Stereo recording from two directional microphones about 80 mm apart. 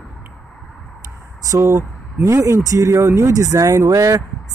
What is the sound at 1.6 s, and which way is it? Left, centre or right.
Speech, right.